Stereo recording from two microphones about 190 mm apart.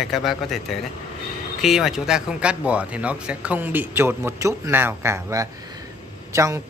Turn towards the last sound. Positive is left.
turn(degrees=-15)  # may be behind; listen again after turning